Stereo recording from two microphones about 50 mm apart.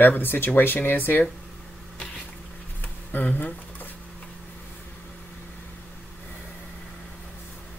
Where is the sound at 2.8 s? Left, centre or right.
Left.